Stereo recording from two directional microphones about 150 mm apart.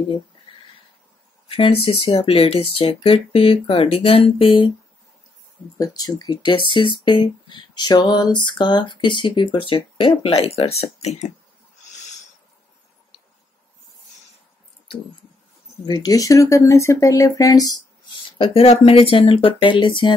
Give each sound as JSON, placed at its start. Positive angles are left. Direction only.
{"t": 1.5, "sound": "speech", "side_deg": 40}
{"t": 5.8, "sound": "speech", "side_deg": 25}
{"t": 11.8, "sound": "a sound", "side_deg": 50}
{"t": 15.8, "sound": "speech", "side_deg": 30}